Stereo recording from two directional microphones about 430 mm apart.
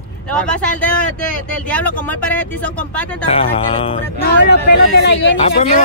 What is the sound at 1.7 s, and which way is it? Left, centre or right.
Speech, centre.